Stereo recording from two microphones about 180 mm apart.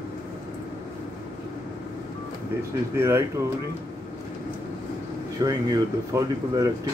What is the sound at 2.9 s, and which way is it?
Speech, 15° right (ahead or behind).